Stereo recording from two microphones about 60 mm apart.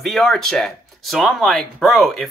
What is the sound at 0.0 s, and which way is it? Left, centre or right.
Speech, centre.